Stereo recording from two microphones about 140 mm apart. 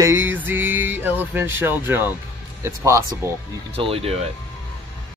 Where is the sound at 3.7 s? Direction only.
40° right (ahead or behind).